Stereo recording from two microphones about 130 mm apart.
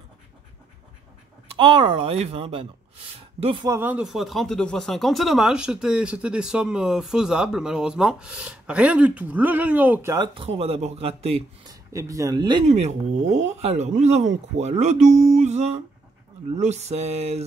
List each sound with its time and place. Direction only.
1.6 s speech: 40° right (ahead or behind)
3.8 s speech: 5° right (ahead or behind)
10.1 s speech: 40° right (ahead or behind)
11.7 s speech: 25° right (ahead or behind)
12.6 s speech: 55° right (ahead or behind)